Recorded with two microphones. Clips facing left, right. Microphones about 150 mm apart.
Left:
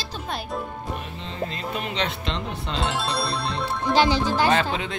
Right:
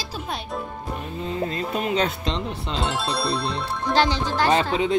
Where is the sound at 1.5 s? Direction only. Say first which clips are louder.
Right 5 dB; 40° right (ahead or behind).